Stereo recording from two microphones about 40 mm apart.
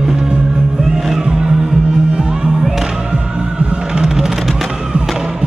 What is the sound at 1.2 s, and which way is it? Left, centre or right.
Music, centre.